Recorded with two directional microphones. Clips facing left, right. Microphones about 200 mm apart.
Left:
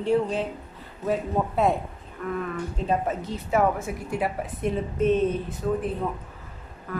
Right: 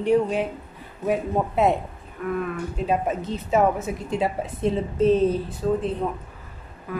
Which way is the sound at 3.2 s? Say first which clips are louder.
Right 2 dB; 20° right (ahead or behind).